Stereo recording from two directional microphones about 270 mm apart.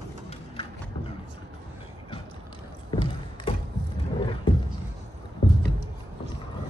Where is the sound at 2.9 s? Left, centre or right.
Centre.